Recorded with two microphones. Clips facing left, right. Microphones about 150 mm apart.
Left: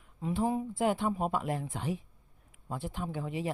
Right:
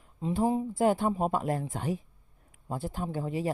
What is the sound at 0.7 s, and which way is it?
Speech, 40° right (ahead or behind).